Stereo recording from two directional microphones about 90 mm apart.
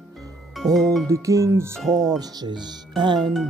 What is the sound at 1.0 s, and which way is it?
Music, 35° right (ahead or behind).